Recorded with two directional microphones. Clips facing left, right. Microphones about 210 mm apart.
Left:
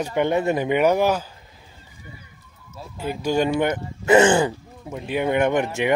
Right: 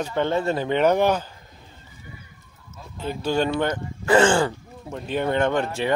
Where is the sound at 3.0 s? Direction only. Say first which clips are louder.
Left 2 dB; 10° left (ahead or behind).